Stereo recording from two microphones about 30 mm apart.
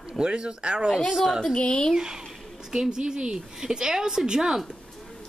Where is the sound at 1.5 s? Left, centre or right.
Left.